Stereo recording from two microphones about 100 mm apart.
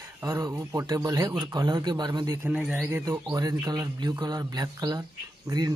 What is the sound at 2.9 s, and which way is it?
Speech, 30° right (ahead or behind).